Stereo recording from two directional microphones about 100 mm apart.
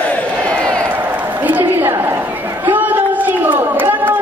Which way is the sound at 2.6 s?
20° right (ahead or behind).